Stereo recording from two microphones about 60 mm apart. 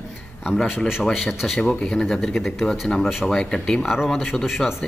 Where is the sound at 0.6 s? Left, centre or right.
Centre.